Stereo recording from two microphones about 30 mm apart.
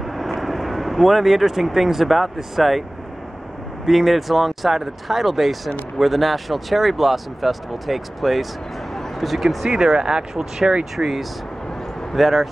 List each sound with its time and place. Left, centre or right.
0.2 s speech: centre
3.8 s speech: centre
9.7 s speech: right
11.0 s speech: centre